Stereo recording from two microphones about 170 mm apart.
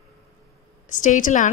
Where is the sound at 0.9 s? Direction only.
50° left (ahead or behind).